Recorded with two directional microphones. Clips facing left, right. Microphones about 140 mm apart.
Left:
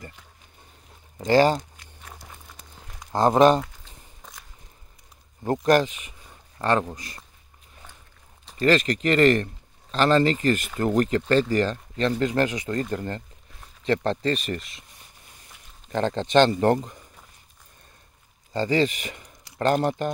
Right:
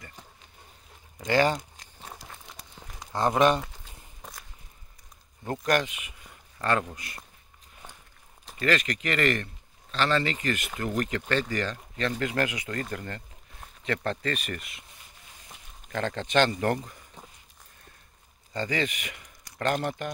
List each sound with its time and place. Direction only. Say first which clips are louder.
1.1 s speech: left 5 dB; 35° left (ahead or behind)
1.8 s crumpling: right 1 dB; 30° right (ahead or behind)
3.1 s speech: left 6 dB; 35° left (ahead or behind)
5.4 s speech: left 7 dB; 35° left (ahead or behind)
8.5 s speech: left 6 dB; 35° left (ahead or behind)
15.9 s speech: left 6 dB; 30° left (ahead or behind)
18.5 s speech: left 7 dB; 30° left (ahead or behind)